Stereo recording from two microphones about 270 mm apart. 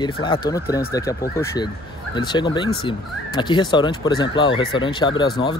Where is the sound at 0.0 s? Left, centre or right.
Centre.